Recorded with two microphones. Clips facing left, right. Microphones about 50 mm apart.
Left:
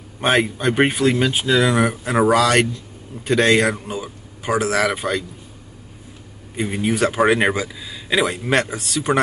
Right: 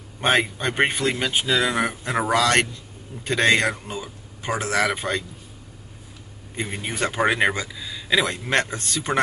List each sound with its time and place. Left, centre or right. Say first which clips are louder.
0.2 s speech: left 3 dB; centre
6.5 s speech: left 8 dB; centre